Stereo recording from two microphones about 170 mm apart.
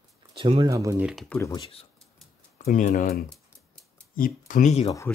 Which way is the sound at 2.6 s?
50° left (ahead or behind).